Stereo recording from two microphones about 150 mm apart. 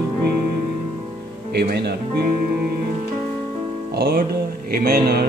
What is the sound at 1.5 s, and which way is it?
Speech, 90° right.